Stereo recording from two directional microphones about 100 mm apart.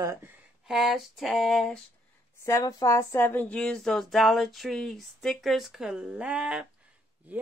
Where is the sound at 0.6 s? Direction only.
5° right (ahead or behind).